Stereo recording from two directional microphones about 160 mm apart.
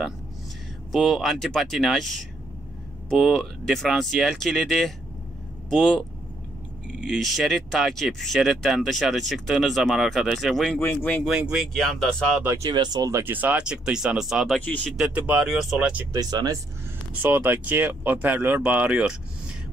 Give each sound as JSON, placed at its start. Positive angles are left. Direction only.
{"t": 0.9, "sound": "speech", "side_deg": 0}
{"t": 10.8, "sound": "speech", "side_deg": 10}
{"t": 11.2, "sound": "speech", "side_deg": -5}
{"t": 12.4, "sound": "speech", "side_deg": -15}
{"t": 16.1, "sound": "speech", "side_deg": -25}
{"t": 17.1, "sound": "speech", "side_deg": -10}